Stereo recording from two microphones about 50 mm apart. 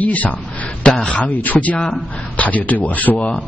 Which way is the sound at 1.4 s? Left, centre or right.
Left.